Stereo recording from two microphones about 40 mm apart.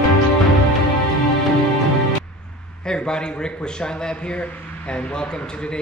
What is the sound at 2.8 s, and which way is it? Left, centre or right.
Speech, centre.